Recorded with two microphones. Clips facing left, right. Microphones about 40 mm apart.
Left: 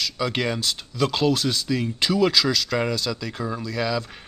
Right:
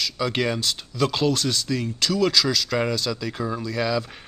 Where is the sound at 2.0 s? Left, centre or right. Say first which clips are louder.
Left 1 dB; centre.